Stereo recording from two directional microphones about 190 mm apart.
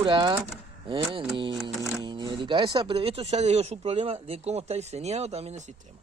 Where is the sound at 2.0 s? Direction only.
25° right (ahead or behind).